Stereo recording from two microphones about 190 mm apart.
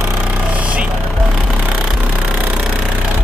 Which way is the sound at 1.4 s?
Centre (ahead or behind).